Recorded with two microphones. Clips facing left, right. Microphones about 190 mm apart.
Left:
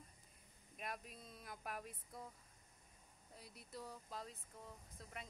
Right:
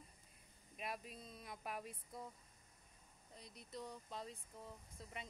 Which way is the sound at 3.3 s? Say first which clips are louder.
Right 2 dB; 5° left (ahead or behind).